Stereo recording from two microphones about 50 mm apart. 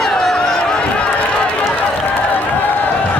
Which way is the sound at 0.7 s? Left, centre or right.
Centre.